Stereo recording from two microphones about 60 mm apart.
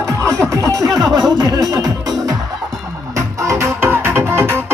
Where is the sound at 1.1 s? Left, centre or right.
Right.